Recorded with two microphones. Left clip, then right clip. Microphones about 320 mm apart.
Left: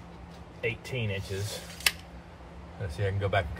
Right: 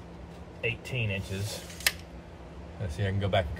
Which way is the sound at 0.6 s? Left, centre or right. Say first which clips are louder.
Even; centre.